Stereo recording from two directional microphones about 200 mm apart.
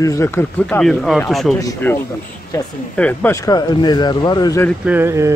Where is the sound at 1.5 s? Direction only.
15° left (ahead or behind).